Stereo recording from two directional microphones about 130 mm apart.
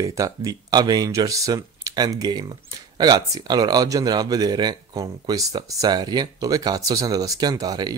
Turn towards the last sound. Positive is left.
turn(degrees=-30)  # may be behind; listen again after turning